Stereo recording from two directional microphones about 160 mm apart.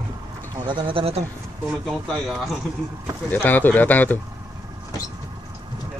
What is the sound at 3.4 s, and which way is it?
Speech, 10° left (ahead or behind).